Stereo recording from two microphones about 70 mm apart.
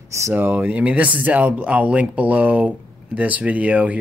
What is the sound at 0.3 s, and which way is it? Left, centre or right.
Speech, right.